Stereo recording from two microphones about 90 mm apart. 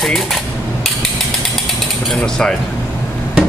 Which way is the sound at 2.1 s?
10° left (ahead or behind).